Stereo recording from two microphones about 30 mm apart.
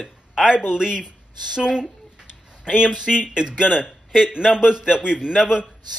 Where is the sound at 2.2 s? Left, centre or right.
Right.